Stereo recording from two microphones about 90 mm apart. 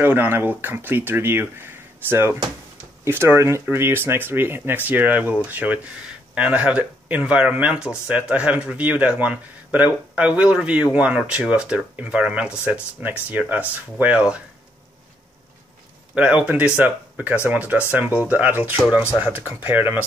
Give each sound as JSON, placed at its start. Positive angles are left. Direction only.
{"t": 0.0, "sound": "speech", "side_deg": -20}
{"t": 16.4, "sound": "speech", "side_deg": -15}